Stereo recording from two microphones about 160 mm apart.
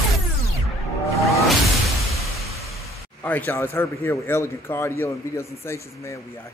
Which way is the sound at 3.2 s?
10° left (ahead or behind).